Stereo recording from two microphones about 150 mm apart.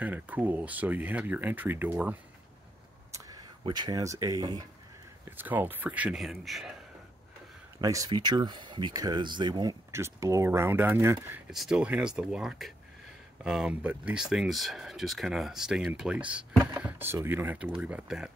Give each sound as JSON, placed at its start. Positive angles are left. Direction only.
{"t": 0.0, "sound": "speech", "side_deg": -10}
{"t": 3.1, "sound": "speech", "side_deg": -25}
{"t": 5.4, "sound": "speech", "side_deg": -15}
{"t": 7.8, "sound": "speech", "side_deg": -25}
{"t": 11.5, "sound": "speech", "side_deg": -5}